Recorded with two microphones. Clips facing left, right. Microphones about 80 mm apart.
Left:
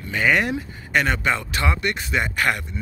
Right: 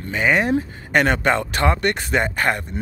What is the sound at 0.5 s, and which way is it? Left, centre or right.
Speech, right.